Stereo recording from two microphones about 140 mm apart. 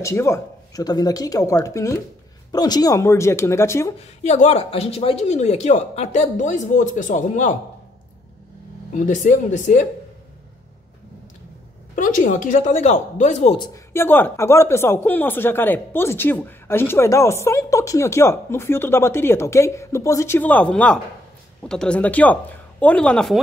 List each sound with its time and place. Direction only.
0.0 s speech: 20° left (ahead or behind)
4.2 s speech: 50° left (ahead or behind)
9.0 s speech: 60° left (ahead or behind)
11.9 s speech: 70° left (ahead or behind); by 13.6 s 55° left (ahead or behind)
13.9 s speech: 15° left (ahead or behind)